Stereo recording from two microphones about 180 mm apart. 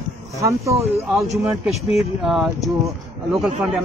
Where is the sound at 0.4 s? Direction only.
15° right (ahead or behind).